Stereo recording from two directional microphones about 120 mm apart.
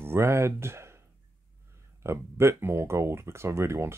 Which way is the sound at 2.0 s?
20° right (ahead or behind).